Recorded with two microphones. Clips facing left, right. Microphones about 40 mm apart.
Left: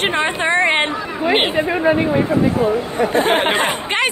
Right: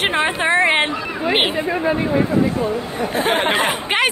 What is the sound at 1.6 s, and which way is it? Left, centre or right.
Speech, left.